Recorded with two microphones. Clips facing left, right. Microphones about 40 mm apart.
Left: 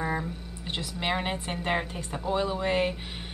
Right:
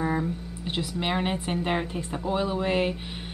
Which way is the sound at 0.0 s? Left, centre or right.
Centre.